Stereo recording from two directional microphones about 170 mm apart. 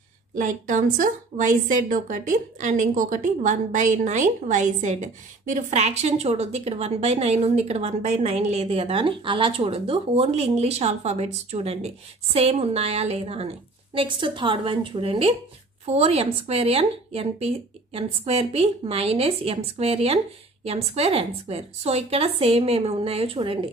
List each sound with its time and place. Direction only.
0.4 s a woman's voice: 50° right (ahead or behind); by 23.7 s 30° right (ahead or behind)